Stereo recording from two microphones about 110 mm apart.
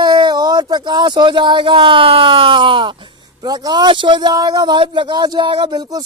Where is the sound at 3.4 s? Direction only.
35° right (ahead or behind).